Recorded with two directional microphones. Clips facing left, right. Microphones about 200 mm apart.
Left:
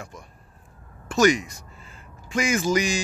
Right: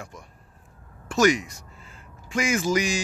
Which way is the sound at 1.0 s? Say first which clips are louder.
Left 1 dB; 5° right (ahead or behind).